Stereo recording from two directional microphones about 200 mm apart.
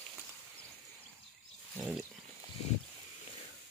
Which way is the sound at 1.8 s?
Centre (ahead or behind).